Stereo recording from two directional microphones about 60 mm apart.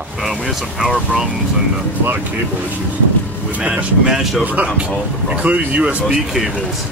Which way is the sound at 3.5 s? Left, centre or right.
Right.